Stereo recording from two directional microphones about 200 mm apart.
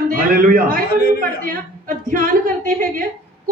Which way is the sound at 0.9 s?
50° left (ahead or behind).